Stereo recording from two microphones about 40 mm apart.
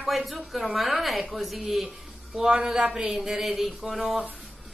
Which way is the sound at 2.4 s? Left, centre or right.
Right.